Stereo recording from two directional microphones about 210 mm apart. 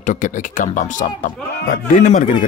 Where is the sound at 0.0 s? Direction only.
35° left (ahead or behind).